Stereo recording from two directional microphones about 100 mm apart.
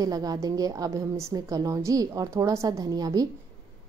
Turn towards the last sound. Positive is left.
turn(degrees=-40)  # may be behind; listen again after turning